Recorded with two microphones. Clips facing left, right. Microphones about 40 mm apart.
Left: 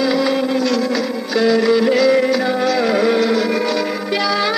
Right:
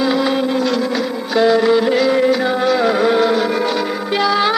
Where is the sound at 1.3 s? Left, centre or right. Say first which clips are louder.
Right 2 dB; right.